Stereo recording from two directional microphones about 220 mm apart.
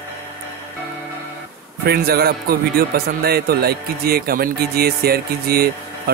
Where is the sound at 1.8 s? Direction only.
45° right (ahead or behind).